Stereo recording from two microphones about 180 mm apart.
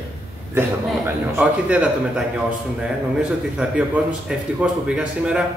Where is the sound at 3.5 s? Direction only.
5° right (ahead or behind).